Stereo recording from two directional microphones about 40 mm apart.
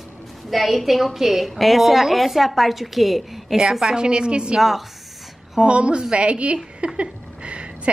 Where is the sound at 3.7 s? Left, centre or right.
Centre.